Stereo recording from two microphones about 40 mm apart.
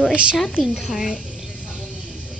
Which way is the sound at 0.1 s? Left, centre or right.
Right.